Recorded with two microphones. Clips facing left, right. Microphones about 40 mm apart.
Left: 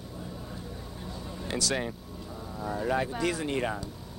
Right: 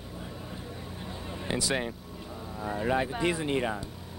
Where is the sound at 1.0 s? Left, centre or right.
Right.